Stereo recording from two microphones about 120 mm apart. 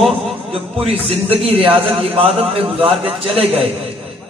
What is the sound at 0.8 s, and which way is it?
A man's voice, 55° right (ahead or behind).